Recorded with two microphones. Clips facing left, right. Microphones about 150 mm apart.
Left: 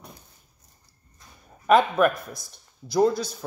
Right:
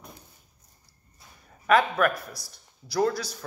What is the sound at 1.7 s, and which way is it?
A man's voice, 20° left (ahead or behind).